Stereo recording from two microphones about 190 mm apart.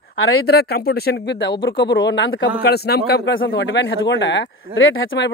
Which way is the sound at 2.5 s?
55° left (ahead or behind).